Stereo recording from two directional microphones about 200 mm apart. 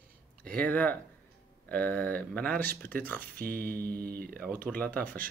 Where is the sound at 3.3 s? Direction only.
45° right (ahead or behind).